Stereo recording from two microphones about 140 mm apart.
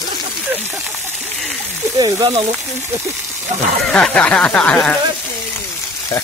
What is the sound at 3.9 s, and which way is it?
Speech, 5° left (ahead or behind).